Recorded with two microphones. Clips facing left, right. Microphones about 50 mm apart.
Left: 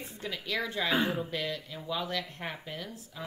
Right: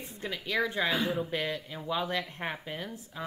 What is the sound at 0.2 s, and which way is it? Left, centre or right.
A woman's voice, centre.